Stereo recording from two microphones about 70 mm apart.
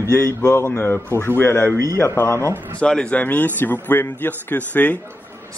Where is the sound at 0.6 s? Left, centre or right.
Left.